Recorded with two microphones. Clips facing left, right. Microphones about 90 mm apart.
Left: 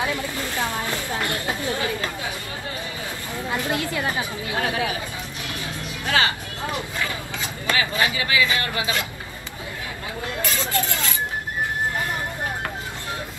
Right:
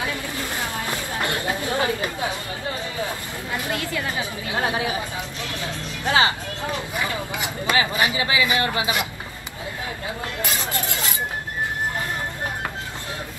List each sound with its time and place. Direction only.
0.0 s a sound: 20° left (ahead or behind)
0.8 s a sound: 20° right (ahead or behind)
1.7 s chatter: 20° right (ahead or behind)
3.4 s a woman's voice: 20° left (ahead or behind)
4.5 s speech: 25° right (ahead or behind)
6.0 s speech: 25° right (ahead or behind)
10.4 s vehicle: 20° right (ahead or behind)